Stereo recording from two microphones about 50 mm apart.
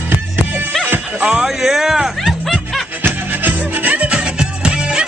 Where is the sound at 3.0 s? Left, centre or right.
Right; by 5.0 s centre.